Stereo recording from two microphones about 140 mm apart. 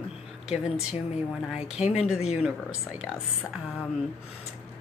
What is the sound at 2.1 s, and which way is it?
Speech, 50° left (ahead or behind).